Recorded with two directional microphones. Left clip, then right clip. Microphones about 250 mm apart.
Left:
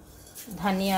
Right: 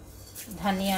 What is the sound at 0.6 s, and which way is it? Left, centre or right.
Speech, left.